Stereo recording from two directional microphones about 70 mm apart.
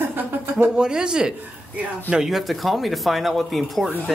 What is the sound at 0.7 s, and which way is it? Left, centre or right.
Speech, centre.